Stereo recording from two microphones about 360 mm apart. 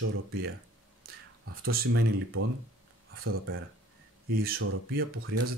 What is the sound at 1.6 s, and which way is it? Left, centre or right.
Speech, right.